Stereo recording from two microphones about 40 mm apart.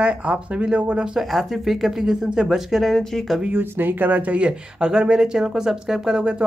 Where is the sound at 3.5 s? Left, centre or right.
Right.